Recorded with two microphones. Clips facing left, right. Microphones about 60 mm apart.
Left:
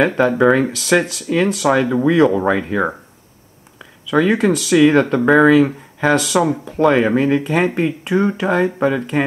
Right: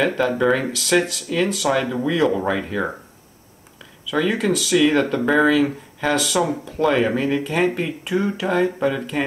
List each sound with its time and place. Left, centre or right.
0.1 s speech: centre
4.1 s speech: centre